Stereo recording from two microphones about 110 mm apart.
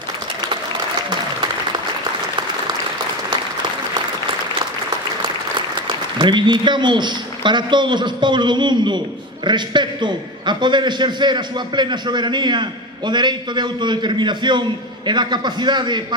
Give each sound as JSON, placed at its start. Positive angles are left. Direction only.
{"t": 5.9, "sound": "a man's voice", "side_deg": -45}